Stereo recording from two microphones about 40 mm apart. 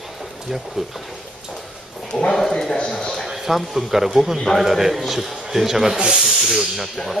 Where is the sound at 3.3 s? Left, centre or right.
Centre.